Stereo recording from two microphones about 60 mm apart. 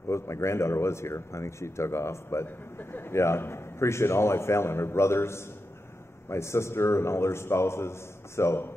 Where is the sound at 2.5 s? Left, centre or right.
Left.